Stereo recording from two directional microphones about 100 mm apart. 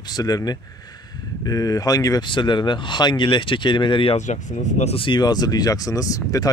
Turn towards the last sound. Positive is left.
turn(degrees=35)  # may be behind; listen again after turning